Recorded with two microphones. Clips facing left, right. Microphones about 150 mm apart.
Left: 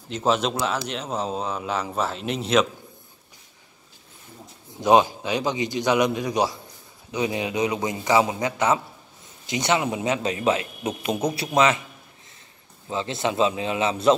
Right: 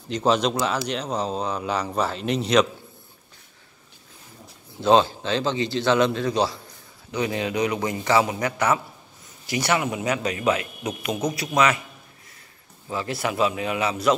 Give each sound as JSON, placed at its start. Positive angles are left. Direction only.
{"t": 0.1, "sound": "speech", "side_deg": 5}
{"t": 4.8, "sound": "a man's voice", "side_deg": 15}
{"t": 12.9, "sound": "a man's voice", "side_deg": 25}